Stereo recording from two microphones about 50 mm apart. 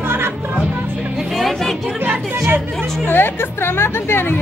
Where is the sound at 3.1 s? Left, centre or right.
Left.